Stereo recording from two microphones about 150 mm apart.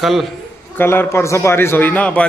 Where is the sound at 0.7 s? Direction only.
15° left (ahead or behind).